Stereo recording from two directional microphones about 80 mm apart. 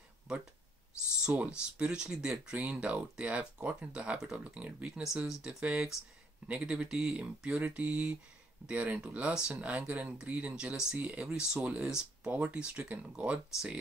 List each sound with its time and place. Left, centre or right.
1.2 s speech: centre